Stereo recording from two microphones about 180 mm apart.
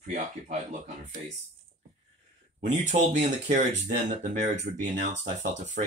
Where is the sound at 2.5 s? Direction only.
40° right (ahead or behind).